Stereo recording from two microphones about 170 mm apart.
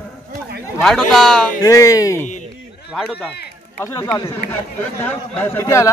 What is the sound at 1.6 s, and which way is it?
Speech, 20° left (ahead or behind).